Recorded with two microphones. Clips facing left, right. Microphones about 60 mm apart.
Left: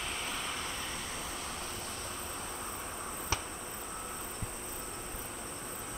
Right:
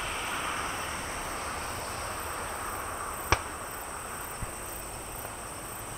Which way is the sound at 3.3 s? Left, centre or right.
Right.